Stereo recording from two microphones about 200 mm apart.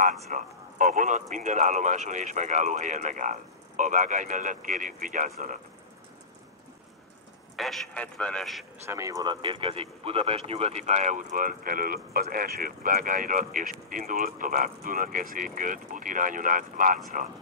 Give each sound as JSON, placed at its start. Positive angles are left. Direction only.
{"t": 0.3, "sound": "speech", "side_deg": -40}
{"t": 7.5, "sound": "a man's voice", "side_deg": 0}
{"t": 8.8, "sound": "speech", "side_deg": -15}